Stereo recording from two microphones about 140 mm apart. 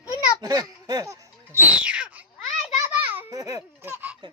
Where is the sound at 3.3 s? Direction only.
25° right (ahead or behind).